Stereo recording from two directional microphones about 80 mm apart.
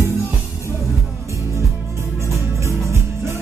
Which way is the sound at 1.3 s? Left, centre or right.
Right.